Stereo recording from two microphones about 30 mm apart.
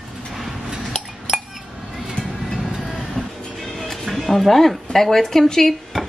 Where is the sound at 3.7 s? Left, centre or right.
Centre.